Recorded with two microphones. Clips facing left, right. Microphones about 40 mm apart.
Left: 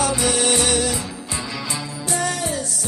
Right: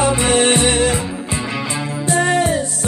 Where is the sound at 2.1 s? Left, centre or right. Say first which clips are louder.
Right 8 dB; right.